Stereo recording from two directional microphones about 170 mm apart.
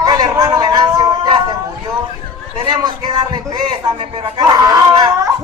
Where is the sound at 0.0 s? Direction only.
20° right (ahead or behind).